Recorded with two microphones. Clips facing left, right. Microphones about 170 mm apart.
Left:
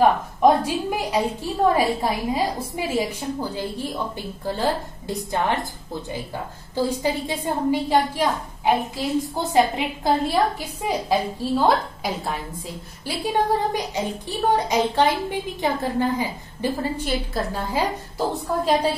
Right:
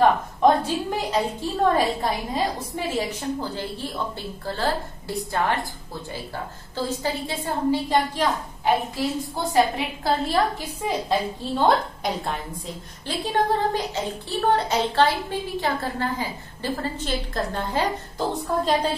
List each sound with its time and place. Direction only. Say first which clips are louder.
0.0 s a woman's voice: left 1 dB; 10° left (ahead or behind)
6.7 s a woman's voice: left 4 dB; 15° left (ahead or behind)
10.9 s a woman's voice: left 2 dB; 5° left (ahead or behind)